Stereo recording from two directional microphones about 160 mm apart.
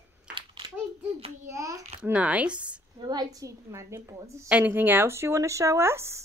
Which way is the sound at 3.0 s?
25° right (ahead or behind).